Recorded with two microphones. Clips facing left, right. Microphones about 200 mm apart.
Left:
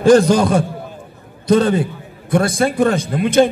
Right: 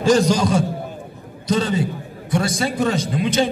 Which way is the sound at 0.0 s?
55° left (ahead or behind).